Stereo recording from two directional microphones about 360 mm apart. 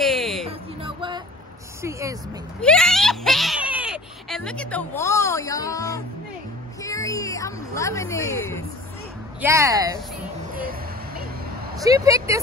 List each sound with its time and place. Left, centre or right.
0.0 s a sound: centre
0.5 s a sound: centre
1.8 s speech: centre
9.4 s speech: centre
10.5 s music: right
11.8 s speech: centre